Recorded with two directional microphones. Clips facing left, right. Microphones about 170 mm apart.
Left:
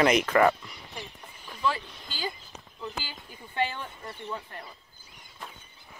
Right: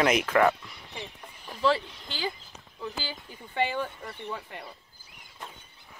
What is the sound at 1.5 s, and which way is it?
Vehicle, 30° right (ahead or behind).